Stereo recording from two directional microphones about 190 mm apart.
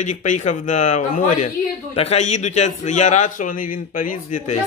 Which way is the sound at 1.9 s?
35° left (ahead or behind).